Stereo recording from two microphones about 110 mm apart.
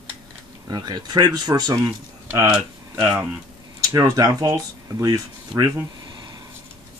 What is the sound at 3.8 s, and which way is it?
Speech, 30° right (ahead or behind).